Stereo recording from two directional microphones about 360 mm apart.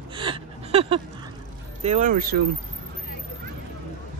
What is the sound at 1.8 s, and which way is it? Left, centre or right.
Speech, centre.